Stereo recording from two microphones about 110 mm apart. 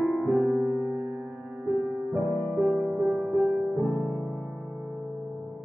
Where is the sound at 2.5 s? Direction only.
5° right (ahead or behind).